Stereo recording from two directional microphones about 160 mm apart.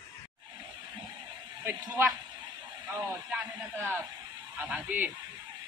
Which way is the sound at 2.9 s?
10° right (ahead or behind).